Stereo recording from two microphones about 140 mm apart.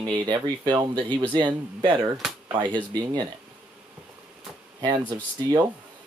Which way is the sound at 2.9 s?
30° right (ahead or behind).